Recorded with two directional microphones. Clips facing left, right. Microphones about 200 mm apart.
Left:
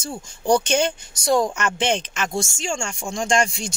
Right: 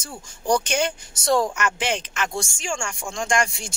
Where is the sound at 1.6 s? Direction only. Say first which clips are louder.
Left 3 dB; 25° left (ahead or behind).